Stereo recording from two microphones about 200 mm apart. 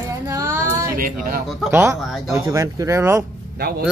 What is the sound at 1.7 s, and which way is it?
Speech, 10° right (ahead or behind).